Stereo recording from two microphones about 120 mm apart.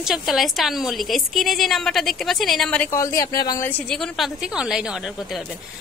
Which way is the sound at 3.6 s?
15° left (ahead or behind).